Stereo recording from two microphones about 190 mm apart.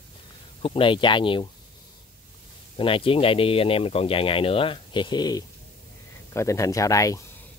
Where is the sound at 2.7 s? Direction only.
30° left (ahead or behind).